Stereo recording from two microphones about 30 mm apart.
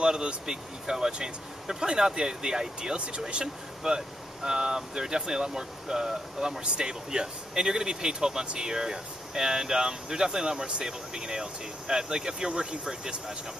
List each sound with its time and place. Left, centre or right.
0.0 s speech: right
0.5 s speech: centre
6.6 s speech: right